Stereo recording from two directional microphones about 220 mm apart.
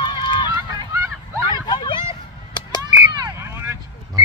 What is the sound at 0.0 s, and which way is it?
Run, 20° left (ahead or behind).